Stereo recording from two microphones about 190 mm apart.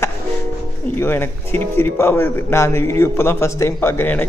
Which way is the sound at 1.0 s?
10° left (ahead or behind).